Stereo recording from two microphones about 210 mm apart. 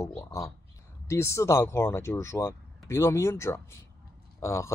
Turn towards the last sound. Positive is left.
turn(degrees=15)  # may be behind; listen again after turning